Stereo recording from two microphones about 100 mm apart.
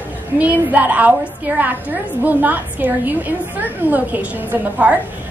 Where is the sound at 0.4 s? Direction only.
15° right (ahead or behind).